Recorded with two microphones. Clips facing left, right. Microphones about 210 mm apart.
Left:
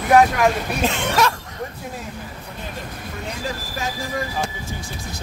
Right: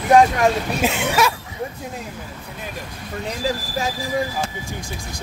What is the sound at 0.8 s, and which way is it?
Speech, 10° right (ahead or behind).